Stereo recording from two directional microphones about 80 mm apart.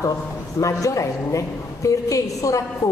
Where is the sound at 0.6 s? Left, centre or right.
Left.